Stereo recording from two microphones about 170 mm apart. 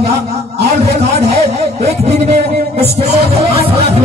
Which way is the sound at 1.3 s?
40° right (ahead or behind).